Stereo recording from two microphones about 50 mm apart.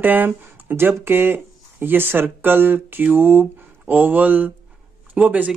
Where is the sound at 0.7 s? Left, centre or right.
Right.